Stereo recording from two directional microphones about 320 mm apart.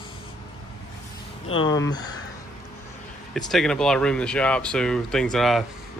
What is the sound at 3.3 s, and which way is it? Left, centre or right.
Speech, centre.